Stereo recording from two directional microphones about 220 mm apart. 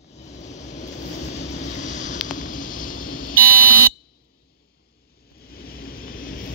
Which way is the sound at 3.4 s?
40° right (ahead or behind).